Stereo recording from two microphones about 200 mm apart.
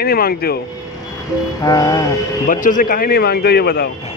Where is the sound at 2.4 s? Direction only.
45° left (ahead or behind).